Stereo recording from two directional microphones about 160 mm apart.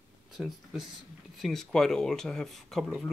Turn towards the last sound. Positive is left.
turn(degrees=0)  # may be behind; listen again after turning